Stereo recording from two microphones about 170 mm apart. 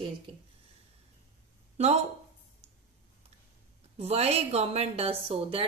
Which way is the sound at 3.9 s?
35° right (ahead or behind).